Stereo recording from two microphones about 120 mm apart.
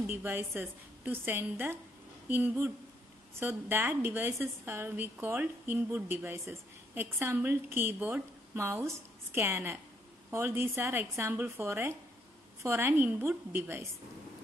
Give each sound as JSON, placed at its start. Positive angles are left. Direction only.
{"t": 0.0, "sound": "a woman's voice", "side_deg": -15}